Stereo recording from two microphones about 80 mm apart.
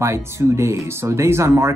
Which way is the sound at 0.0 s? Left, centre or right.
Right.